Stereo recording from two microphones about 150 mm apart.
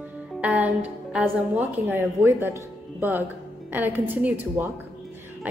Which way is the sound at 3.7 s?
10° right (ahead or behind).